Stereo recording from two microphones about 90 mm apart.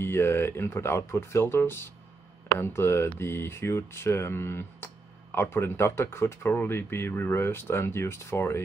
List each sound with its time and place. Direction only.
0.0 s speech: 25° left (ahead or behind)